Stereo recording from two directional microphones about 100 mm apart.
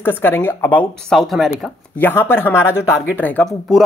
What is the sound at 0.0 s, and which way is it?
Speech, 20° left (ahead or behind).